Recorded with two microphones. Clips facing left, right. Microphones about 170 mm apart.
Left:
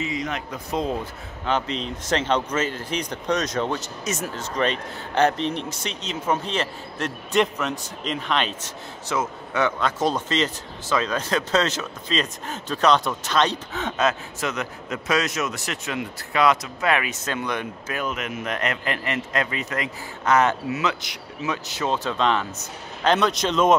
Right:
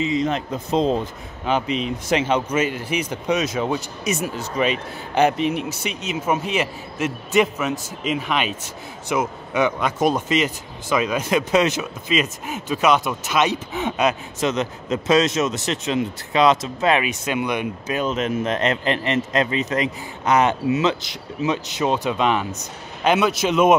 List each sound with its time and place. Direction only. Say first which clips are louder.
0.0 s a man's voice: right 7 dB; 25° right (ahead or behind)
1.4 s speech: right 3 dB; 10° right (ahead or behind)